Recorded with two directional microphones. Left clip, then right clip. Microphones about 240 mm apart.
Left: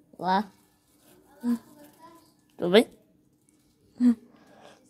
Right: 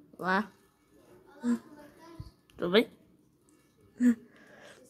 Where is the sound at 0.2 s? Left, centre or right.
Centre.